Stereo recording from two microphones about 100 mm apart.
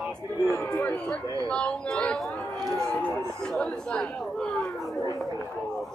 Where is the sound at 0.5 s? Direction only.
15° left (ahead or behind).